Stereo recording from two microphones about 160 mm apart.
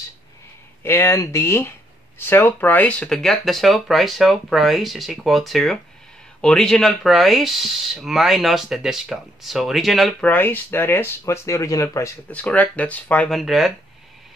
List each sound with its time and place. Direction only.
0.8 s speech: 15° left (ahead or behind)
10.2 s speech: 10° left (ahead or behind)
12.3 s speech: 10° left (ahead or behind)